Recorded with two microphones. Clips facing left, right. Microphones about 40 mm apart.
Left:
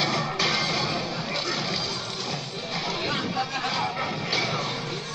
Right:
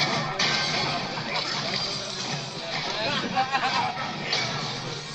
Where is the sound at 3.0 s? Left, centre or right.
Right.